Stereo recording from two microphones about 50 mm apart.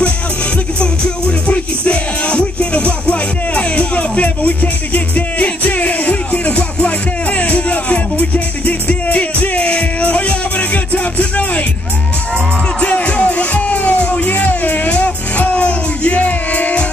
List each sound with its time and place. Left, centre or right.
0.7 s music: left
12.8 s music: left